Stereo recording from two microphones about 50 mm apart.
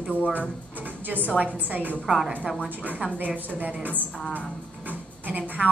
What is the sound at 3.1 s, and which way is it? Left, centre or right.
Speech, right.